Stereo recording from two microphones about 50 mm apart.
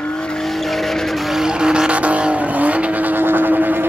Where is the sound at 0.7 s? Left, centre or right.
Centre.